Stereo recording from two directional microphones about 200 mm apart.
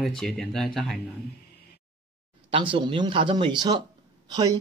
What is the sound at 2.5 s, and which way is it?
Speech, 25° right (ahead or behind).